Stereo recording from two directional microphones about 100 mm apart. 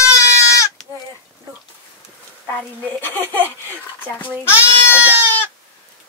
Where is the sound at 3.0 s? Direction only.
20° left (ahead or behind).